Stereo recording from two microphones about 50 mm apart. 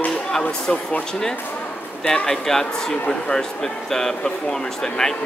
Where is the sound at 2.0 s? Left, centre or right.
Centre.